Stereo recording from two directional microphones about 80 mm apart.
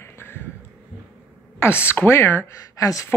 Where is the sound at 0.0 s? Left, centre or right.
Left.